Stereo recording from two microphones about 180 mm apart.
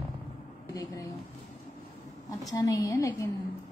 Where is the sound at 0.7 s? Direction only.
20° left (ahead or behind).